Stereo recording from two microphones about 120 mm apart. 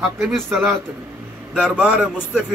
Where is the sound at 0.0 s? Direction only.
5° right (ahead or behind).